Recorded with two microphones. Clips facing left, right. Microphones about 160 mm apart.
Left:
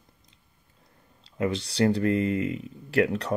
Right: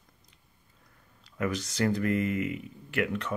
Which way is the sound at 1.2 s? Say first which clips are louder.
Left 3 dB; 25° left (ahead or behind).